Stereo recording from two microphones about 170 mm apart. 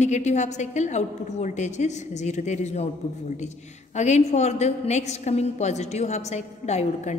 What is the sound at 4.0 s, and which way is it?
A woman's voice, 40° left (ahead or behind).